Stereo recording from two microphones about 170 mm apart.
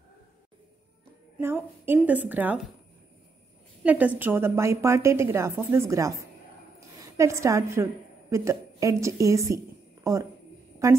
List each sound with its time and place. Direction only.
1.4 s a woman's voice: 15° right (ahead or behind)
3.8 s a woman's voice: 10° right (ahead or behind)